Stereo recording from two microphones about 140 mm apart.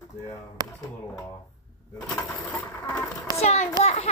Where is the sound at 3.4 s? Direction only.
50° left (ahead or behind).